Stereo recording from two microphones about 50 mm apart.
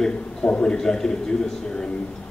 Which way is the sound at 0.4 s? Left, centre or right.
Left.